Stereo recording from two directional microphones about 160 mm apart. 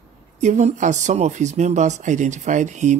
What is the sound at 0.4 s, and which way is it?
Speech, 50° right (ahead or behind).